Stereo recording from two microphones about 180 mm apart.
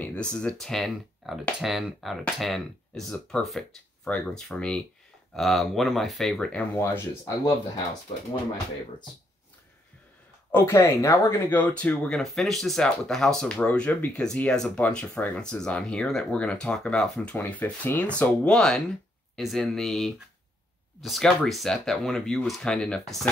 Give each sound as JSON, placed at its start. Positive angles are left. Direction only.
{"t": 0.0, "sound": "speech", "side_deg": 5}
{"t": 10.5, "sound": "speech", "side_deg": 15}